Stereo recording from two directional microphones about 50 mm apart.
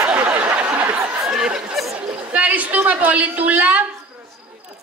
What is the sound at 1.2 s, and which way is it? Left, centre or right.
Chatter, centre.